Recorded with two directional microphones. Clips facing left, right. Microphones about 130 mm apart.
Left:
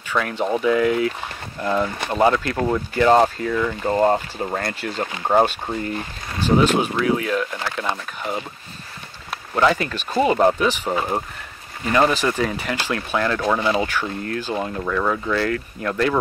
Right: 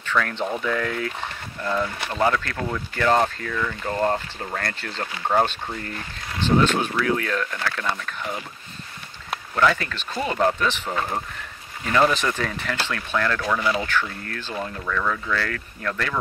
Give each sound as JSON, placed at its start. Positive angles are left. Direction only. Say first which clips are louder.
{"t": 0.0, "sound": "speech", "louder": "left 2 dB", "side_deg": 10}
{"t": 9.6, "sound": "speech", "louder": "left 3 dB", "side_deg": 20}